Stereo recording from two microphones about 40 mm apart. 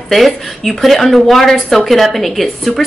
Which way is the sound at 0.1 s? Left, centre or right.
Centre.